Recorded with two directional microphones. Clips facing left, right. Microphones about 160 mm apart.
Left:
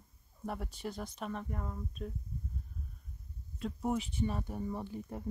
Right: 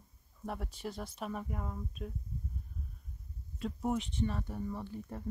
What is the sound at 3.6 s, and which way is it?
Speech, centre (ahead or behind).